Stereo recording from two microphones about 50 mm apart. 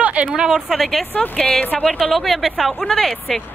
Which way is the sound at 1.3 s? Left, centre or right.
Centre.